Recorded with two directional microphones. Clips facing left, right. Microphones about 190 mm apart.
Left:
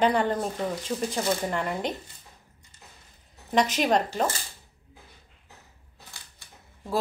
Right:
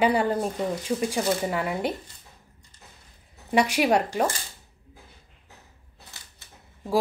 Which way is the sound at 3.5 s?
10° right (ahead or behind).